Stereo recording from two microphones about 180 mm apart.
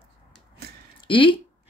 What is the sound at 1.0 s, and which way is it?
Speech, 30° left (ahead or behind).